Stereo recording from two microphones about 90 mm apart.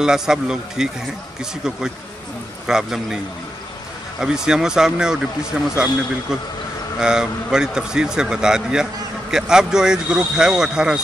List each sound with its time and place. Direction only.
0.0 s a man's voice: 5° right (ahead or behind)
2.6 s a man's voice: 5° right (ahead or behind)
4.2 s a man's voice: 5° right (ahead or behind)
7.0 s a man's voice: 10° right (ahead or behind)